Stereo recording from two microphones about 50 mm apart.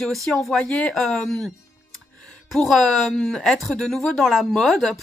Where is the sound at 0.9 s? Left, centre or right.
Centre.